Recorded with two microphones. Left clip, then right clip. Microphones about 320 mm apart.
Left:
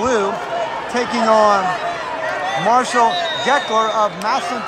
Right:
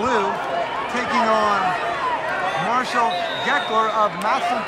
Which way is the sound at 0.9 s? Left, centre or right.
Centre.